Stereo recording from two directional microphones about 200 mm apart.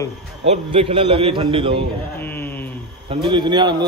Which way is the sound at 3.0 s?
25° right (ahead or behind).